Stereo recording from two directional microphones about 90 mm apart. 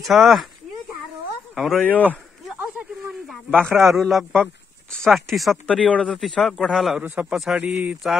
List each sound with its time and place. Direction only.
0.0 s a man's voice: centre (ahead or behind)
1.5 s speech: centre (ahead or behind)
1.8 s speech: 15° left (ahead or behind)
3.3 s a sound: 10° left (ahead or behind)
3.8 s a man's voice: centre (ahead or behind)
5.7 s a man's voice: 10° left (ahead or behind)
7.0 s speech: 15° right (ahead or behind)
7.3 s a man's voice: 5° right (ahead or behind)
7.6 s speech: 15° right (ahead or behind)